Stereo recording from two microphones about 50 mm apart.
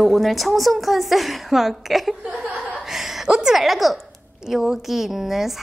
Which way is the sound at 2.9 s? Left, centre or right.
Centre.